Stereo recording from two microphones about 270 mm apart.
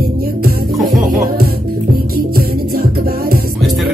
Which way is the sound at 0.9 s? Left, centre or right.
Right.